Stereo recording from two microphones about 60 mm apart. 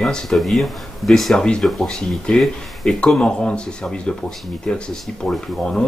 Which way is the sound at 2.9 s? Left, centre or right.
Centre.